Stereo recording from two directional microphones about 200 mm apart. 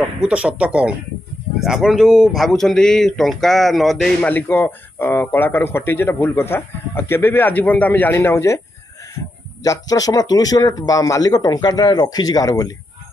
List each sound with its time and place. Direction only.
0.2 s speech: 5° right (ahead or behind); by 8.5 s 15° left (ahead or behind)
9.6 s speech: 20° left (ahead or behind)